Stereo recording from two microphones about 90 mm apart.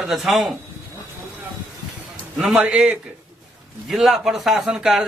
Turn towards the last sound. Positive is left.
turn(degrees=-5)  # may be behind; listen again after turning